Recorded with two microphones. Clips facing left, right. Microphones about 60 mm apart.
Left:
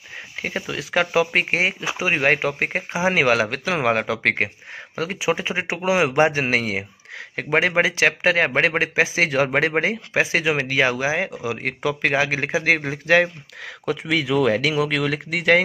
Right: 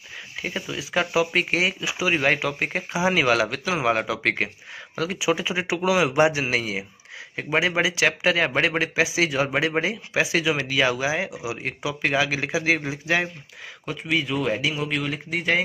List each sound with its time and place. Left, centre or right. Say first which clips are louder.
0.7 s a man's voice: left 4 dB; left
11.4 s speech: left 5 dB; left
13.8 s speech: left 3 dB; left